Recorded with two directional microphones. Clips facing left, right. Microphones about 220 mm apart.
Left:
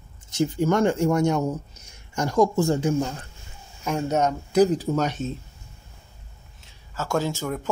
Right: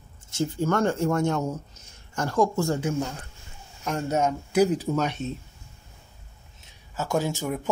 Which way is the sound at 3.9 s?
5° right (ahead or behind).